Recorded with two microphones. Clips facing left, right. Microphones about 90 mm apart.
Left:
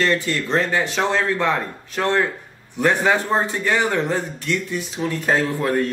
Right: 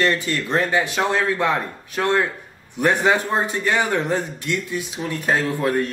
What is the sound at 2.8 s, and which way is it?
Speech, 15° right (ahead or behind).